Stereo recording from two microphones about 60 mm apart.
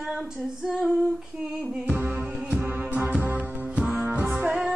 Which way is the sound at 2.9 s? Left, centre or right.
Right.